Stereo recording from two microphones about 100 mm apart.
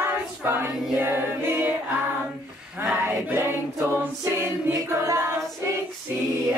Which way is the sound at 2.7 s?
10° right (ahead or behind).